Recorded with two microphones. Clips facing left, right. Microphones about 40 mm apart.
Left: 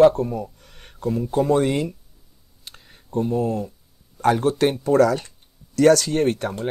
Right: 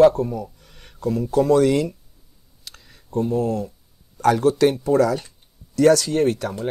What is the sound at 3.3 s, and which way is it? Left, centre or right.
Speech, left.